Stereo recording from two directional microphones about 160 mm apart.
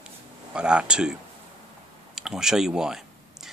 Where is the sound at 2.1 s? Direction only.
5° right (ahead or behind).